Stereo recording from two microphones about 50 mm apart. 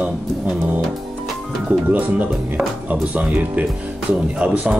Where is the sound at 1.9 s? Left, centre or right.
Right.